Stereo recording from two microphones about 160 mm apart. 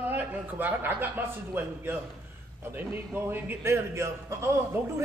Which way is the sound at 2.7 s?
10° right (ahead or behind).